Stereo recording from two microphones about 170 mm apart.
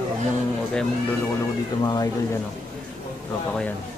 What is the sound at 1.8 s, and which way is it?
Speech, 25° left (ahead or behind).